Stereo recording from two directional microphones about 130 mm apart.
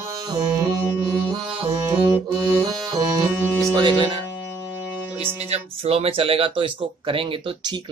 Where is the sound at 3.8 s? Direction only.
35° right (ahead or behind).